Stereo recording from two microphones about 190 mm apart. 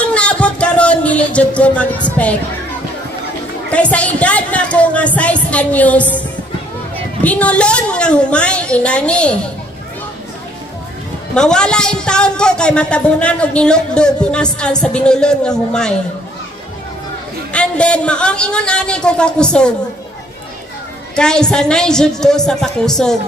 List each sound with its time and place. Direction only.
0.0 s music: 5° left (ahead or behind)
2.0 s speech: 5° left (ahead or behind)
3.7 s speech: 5° left (ahead or behind)
7.2 s a woman's voice: 5° left (ahead or behind)
11.3 s a woman's voice: 5° left (ahead or behind)
17.5 s a woman's voice: 5° left (ahead or behind)
21.2 s a woman's voice: 5° left (ahead or behind)